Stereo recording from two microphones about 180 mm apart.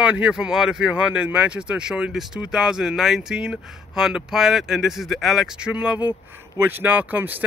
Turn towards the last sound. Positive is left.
turn(degrees=-10)  # may be behind; listen again after turning